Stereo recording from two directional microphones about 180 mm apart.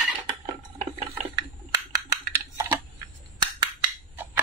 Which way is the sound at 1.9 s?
20° right (ahead or behind).